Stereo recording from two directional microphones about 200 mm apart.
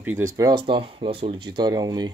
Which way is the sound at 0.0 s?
10° right (ahead or behind).